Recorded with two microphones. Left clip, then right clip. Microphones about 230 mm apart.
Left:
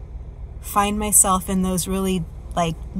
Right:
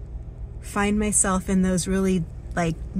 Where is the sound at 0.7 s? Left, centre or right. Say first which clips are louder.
Left 4 dB; left.